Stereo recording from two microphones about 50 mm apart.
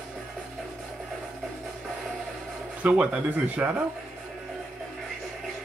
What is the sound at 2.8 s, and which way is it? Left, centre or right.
Speech, right.